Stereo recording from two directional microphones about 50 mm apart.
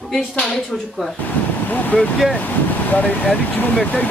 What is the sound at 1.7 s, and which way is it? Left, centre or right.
Speech, left.